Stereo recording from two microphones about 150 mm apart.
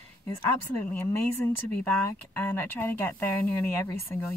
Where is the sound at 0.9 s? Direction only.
15° left (ahead or behind).